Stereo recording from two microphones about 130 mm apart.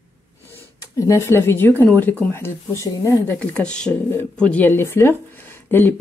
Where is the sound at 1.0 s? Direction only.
20° left (ahead or behind).